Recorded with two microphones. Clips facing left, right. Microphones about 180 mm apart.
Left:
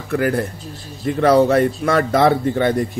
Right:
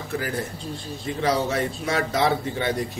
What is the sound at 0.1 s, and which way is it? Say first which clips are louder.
A man's voice: left 10 dB; 60° left (ahead or behind).